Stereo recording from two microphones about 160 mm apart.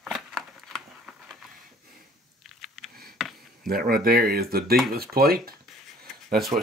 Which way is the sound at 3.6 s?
70° right (ahead or behind).